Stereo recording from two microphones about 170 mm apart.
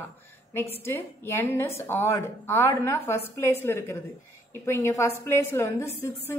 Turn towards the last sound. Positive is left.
turn(degrees=15)  # may be behind; listen again after turning